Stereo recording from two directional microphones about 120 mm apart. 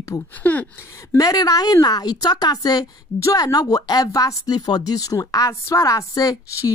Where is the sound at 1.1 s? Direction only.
30° left (ahead or behind).